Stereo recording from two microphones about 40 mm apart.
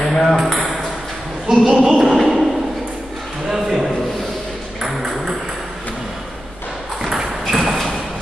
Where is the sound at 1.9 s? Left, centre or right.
Centre.